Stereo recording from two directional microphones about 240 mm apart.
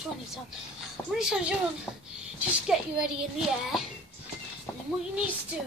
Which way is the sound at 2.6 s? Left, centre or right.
Centre.